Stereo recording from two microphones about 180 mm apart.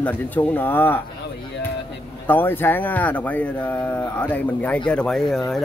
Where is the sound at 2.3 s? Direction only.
10° left (ahead or behind).